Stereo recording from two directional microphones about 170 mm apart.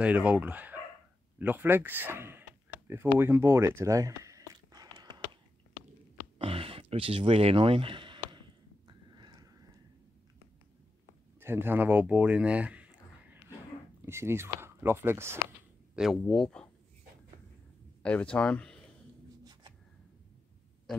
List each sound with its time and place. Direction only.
0.0 s speech: 5° right (ahead or behind)
1.4 s a sound: 10° right (ahead or behind)
6.3 s a sound: 35° right (ahead or behind)
8.8 s horse: 25° right (ahead or behind)
11.3 s speech: 15° right (ahead or behind)
16.0 s speech: centre (ahead or behind)
18.0 s speech: 5° left (ahead or behind)